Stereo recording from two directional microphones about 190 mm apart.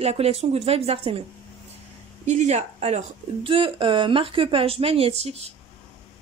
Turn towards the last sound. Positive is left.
turn(degrees=-35)  # may be behind; listen again after turning